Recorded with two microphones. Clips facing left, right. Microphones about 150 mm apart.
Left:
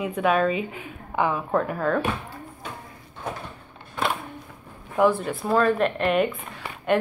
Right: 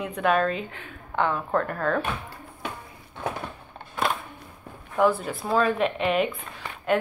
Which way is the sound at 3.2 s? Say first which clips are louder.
Right 2 dB; 65° right (ahead or behind).